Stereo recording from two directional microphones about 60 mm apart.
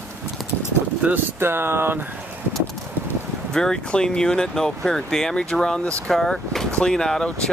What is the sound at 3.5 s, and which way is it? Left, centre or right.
Speech, centre.